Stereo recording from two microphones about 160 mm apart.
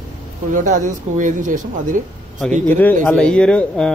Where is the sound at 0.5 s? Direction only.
55° right (ahead or behind).